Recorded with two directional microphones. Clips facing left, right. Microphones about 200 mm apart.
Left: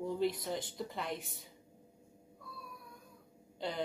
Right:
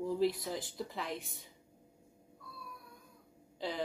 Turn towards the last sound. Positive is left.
turn(degrees=0)  # may be behind; listen again after turning